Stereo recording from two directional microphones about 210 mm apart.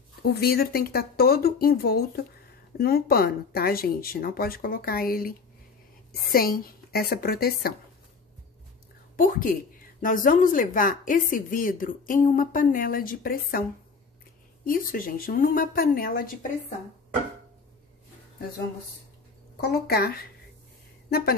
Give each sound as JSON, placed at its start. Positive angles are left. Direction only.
{"t": 0.2, "sound": "speech", "side_deg": 50}
{"t": 6.3, "sound": "speech", "side_deg": 45}
{"t": 9.1, "sound": "a woman's voice", "side_deg": 40}
{"t": 19.6, "sound": "speech", "side_deg": 50}